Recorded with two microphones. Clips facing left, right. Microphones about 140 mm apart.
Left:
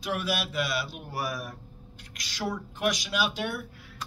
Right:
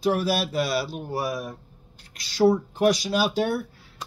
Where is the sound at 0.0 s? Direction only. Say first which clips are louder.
Right 7 dB; 35° right (ahead or behind).